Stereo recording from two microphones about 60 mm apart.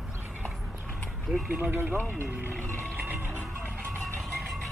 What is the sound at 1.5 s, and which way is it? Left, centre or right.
Speech, right.